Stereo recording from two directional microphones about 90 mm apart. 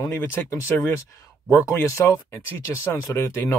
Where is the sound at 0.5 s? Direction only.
35° left (ahead or behind).